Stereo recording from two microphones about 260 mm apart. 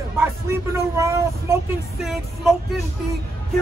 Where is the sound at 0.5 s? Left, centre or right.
Centre.